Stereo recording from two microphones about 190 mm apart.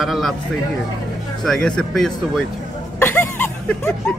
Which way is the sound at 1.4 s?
5° left (ahead or behind).